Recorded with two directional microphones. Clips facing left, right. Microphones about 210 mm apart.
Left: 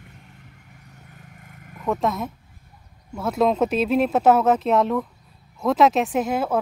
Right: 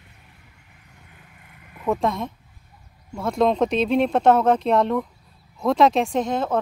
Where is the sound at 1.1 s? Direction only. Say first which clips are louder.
Left 5 dB; 45° left (ahead or behind).